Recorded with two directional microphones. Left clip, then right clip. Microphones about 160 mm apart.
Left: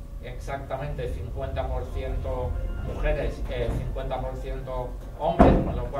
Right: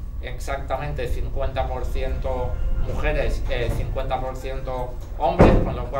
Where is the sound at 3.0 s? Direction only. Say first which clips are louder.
Right 3 dB; 20° right (ahead or behind).